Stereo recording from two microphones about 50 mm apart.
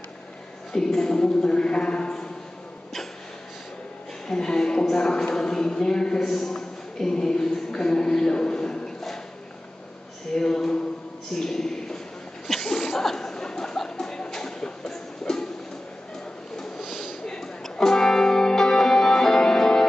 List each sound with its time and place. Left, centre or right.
0.7 s a man's voice: centre
4.3 s speech: centre
10.3 s a man's voice: centre
12.4 s a sound: centre
16.8 s a sound: centre
17.3 s music: centre